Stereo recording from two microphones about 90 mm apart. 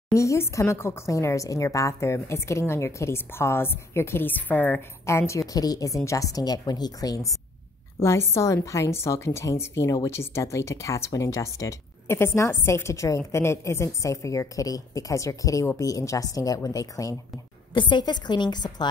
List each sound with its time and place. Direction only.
0.1 s a woman's voice: 35° left (ahead or behind)
5.0 s a woman's voice: 30° left (ahead or behind)
5.5 s a woman's voice: 45° left (ahead or behind)
8.0 s a woman's voice: 30° left (ahead or behind)
17.7 s a woman's voice: 55° left (ahead or behind)